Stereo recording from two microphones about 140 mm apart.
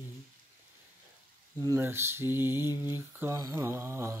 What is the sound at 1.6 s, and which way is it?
Mantra, 20° right (ahead or behind).